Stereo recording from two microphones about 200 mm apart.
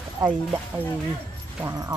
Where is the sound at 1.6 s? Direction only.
15° right (ahead or behind).